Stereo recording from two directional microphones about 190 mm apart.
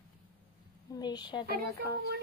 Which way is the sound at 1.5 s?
55° right (ahead or behind).